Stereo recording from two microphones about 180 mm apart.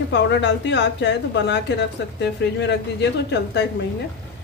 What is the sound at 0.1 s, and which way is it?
Speech, 75° left (ahead or behind).